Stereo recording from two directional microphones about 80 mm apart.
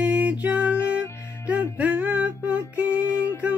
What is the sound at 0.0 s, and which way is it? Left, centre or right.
Music, centre.